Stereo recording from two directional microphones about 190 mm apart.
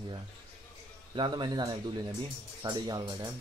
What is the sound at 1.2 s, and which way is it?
Speech, 25° right (ahead or behind).